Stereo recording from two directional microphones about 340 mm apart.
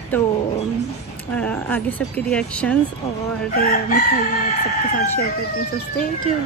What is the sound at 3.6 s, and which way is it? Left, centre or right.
Chicken, left.